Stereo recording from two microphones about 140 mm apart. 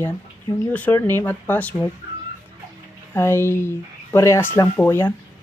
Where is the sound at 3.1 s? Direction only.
20° left (ahead or behind).